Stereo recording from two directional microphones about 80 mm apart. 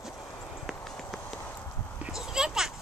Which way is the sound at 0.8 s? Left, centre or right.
Centre.